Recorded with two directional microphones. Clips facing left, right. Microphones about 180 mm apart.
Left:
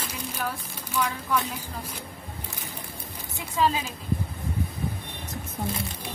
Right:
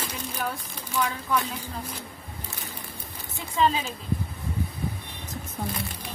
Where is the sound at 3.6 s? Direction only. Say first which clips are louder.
Right 1 dB; 5° left (ahead or behind).